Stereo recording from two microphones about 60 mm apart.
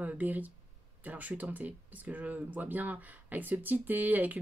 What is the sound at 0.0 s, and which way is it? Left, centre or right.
Speech, right.